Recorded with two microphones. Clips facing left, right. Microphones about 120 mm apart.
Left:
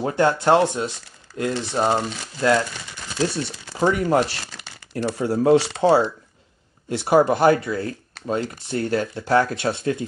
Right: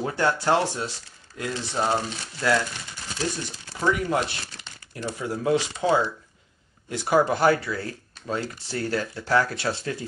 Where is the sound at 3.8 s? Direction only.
40° left (ahead or behind).